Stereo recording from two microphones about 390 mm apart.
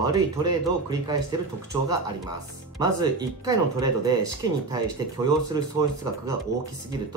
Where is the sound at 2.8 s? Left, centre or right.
Centre.